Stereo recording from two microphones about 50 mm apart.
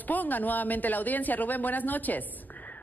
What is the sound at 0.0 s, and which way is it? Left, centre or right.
A man's voice, left.